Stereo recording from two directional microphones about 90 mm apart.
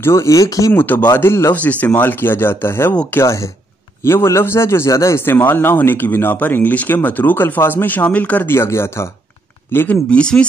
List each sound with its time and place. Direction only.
0.0 s speech: 30° left (ahead or behind)
0.7 s a man's voice: 20° left (ahead or behind)
10.0 s speech: 10° left (ahead or behind)